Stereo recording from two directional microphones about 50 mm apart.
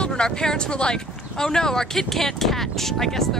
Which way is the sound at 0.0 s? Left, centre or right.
Centre.